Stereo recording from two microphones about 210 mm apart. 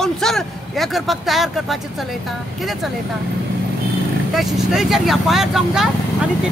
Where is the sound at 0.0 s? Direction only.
Centre (ahead or behind).